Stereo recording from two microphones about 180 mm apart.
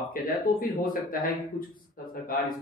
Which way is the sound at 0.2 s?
55° left (ahead or behind).